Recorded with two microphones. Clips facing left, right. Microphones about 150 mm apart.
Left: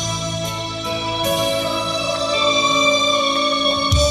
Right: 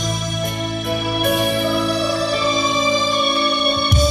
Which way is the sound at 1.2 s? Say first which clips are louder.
Even; 60° right (ahead or behind).